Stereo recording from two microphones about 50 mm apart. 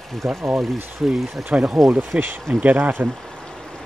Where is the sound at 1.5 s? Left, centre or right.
Right.